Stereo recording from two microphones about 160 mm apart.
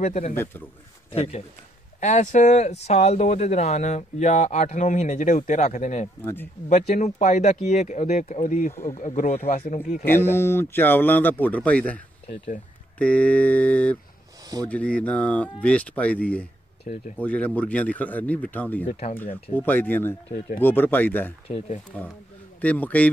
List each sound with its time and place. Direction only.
0.0 s speech: 45° left (ahead or behind)
6.2 s speech: 15° left (ahead or behind)
6.7 s speech: 45° left (ahead or behind)
10.0 s speech: 15° left (ahead or behind)
13.0 s speech: 10° left (ahead or behind)
16.9 s speech: 50° left (ahead or behind)
17.2 s speech: 10° left (ahead or behind)
18.9 s speech: 50° left (ahead or behind)
19.5 s speech: 10° left (ahead or behind)
21.5 s speech: 40° left (ahead or behind)
22.6 s speech: 10° left (ahead or behind)